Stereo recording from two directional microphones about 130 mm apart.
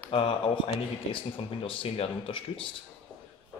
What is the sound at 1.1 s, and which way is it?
Speech, 40° left (ahead or behind).